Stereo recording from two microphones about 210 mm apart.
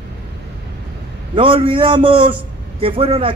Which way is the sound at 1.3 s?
25° right (ahead or behind).